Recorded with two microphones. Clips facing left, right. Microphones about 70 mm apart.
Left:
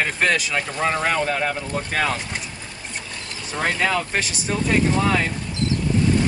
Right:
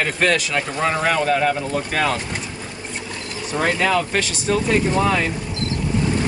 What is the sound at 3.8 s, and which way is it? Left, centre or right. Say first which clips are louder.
Speech: right 2 dB; centre.